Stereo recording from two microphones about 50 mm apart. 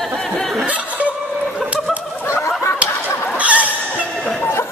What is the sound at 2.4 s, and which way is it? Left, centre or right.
Chicken, left.